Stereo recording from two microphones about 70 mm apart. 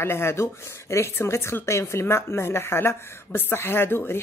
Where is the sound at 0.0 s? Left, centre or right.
Left.